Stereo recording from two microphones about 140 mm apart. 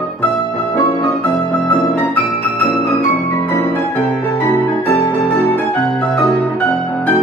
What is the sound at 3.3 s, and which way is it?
Music, 20° left (ahead or behind).